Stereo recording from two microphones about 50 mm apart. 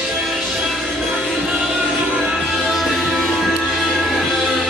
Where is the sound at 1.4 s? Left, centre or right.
Centre.